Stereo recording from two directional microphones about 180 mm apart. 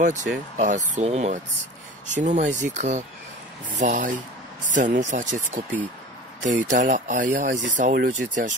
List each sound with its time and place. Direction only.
0.0 s speech: 45° right (ahead or behind)